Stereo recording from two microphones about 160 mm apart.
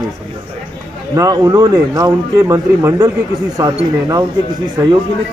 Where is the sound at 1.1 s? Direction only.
20° right (ahead or behind).